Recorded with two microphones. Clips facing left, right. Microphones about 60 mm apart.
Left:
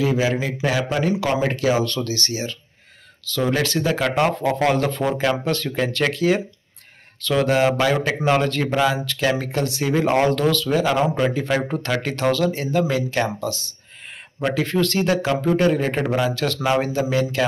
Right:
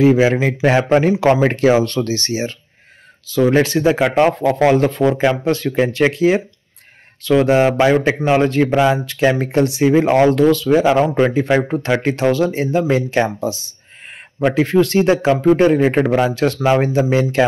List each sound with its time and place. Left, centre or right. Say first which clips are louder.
0.0 s speech: right 8 dB; right
3.3 s speech: right 7 dB; centre
10.8 s speech: right 6 dB; right